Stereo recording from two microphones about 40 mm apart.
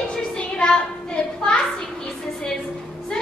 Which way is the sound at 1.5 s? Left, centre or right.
Centre.